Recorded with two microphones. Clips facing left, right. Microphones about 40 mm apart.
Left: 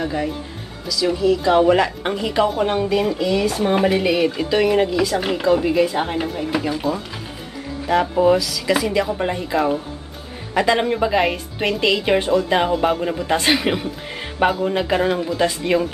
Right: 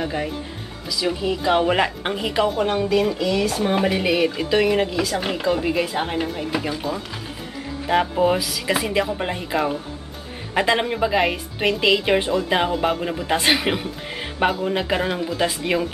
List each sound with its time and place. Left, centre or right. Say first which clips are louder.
0.0 s speech: left 2 dB; centre
2.4 s speech: left 1 dB; centre
10.9 s speech: left 2 dB; centre